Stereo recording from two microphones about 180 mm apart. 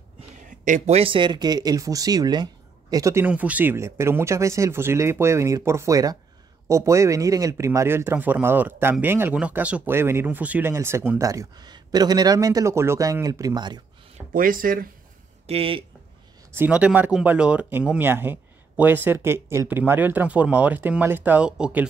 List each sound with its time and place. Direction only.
0.5 s speech: 45° right (ahead or behind); by 13.8 s 25° right (ahead or behind)
14.3 s speech: 50° right (ahead or behind)
15.4 s speech: 30° right (ahead or behind)
16.5 s speech: 10° right (ahead or behind)